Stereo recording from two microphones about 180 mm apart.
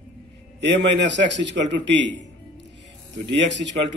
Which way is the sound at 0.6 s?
75° right (ahead or behind).